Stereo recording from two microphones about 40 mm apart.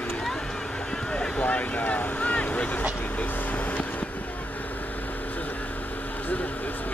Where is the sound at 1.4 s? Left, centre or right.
Left.